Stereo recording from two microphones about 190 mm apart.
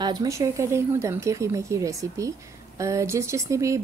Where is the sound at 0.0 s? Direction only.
20° right (ahead or behind).